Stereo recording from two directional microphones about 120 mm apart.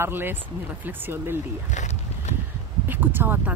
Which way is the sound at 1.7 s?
70° left (ahead or behind).